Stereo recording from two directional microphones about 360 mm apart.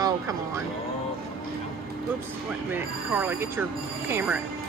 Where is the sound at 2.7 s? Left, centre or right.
Centre.